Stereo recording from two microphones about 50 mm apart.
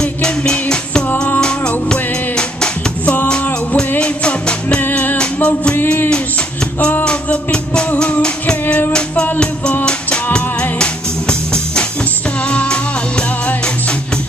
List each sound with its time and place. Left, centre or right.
0.5 s music: centre
5.8 s music: left
7.1 s music: centre
10.8 s music: centre